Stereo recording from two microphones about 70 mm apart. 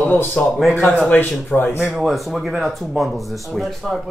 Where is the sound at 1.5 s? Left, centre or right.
Centre.